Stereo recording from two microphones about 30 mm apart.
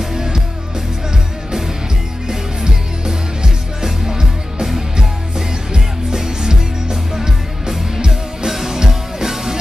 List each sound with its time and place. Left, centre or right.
0.1 s music: centre
2.2 s music: centre
5.7 s music: right
8.0 s music: right
8.5 s music: centre